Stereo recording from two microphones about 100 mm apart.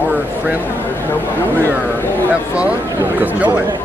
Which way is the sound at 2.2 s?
15° right (ahead or behind).